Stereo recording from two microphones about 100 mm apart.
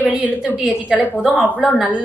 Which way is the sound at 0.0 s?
15° right (ahead or behind).